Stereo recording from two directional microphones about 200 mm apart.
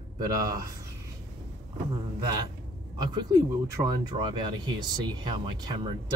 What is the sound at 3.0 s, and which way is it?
Speech, 20° right (ahead or behind).